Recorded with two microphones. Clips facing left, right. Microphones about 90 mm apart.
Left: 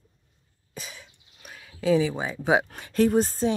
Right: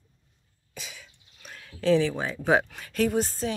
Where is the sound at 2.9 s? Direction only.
35° left (ahead or behind).